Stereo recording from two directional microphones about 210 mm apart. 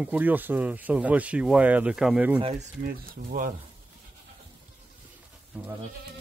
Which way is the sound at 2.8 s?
45° right (ahead or behind).